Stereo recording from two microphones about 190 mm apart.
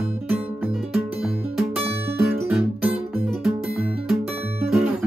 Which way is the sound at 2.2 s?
5° right (ahead or behind).